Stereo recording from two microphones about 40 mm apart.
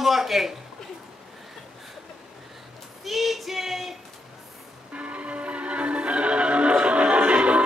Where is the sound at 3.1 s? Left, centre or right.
Centre.